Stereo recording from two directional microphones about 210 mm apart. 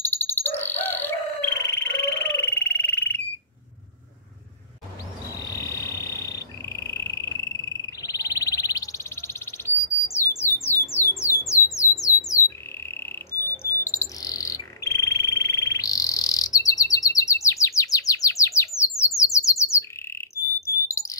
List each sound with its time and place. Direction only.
0.0 s crowing: 10° left (ahead or behind)
5.3 s frog: 15° left (ahead or behind)
9.6 s bird: 10° left (ahead or behind)
10.3 s a sound: 10° left (ahead or behind)
12.4 s bird: 10° left (ahead or behind)